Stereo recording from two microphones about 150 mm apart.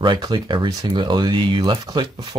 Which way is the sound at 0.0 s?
30° right (ahead or behind).